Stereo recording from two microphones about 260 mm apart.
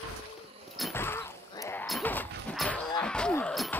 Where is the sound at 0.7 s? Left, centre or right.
Centre.